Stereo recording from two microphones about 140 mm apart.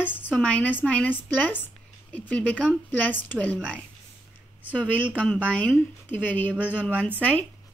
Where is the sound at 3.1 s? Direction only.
15° left (ahead or behind).